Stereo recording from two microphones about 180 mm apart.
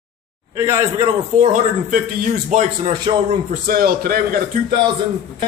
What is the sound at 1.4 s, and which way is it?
Speech, 45° right (ahead or behind).